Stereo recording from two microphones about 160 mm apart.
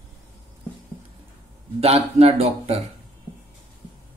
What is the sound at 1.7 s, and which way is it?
Speech, 40° right (ahead or behind).